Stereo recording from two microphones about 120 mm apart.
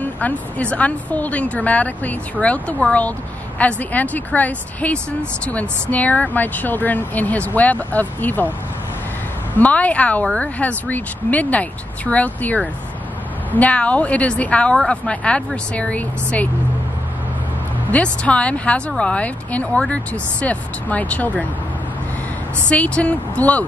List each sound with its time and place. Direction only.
0.0 s a woman's voice: 10° left (ahead or behind)
9.6 s a woman's voice: 10° left (ahead or behind)
17.9 s a woman's voice: 10° left (ahead or behind)
22.7 s a woman's voice: 10° left (ahead or behind)